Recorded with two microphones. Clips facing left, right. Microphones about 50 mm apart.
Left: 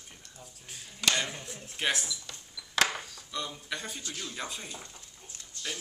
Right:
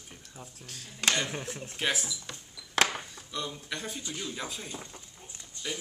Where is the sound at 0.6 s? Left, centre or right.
Centre.